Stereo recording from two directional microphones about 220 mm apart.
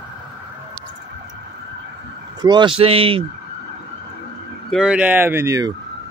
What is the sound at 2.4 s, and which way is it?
Speech, 20° right (ahead or behind).